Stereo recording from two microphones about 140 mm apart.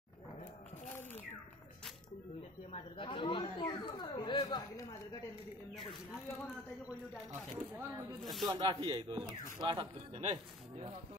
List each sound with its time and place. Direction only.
2.7 s speech: 40° left (ahead or behind)
8.2 s speech: centre (ahead or behind)
8.5 s speech: 35° right (ahead or behind)